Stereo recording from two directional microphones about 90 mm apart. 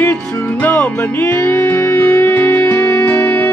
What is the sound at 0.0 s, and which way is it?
Music, 20° left (ahead or behind).